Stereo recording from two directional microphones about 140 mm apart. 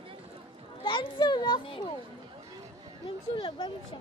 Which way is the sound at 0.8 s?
40° left (ahead or behind).